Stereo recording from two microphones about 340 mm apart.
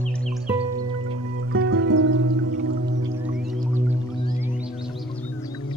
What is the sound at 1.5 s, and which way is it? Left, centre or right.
Music, right.